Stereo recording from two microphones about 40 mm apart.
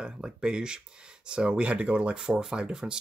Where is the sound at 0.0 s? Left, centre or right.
Centre.